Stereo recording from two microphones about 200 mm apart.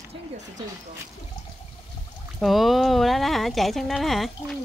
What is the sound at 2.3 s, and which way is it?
Speech, centre (ahead or behind).